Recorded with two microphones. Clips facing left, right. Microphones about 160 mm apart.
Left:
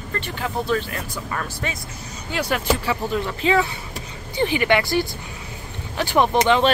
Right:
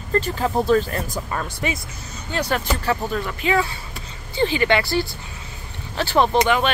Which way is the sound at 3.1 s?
25° left (ahead or behind).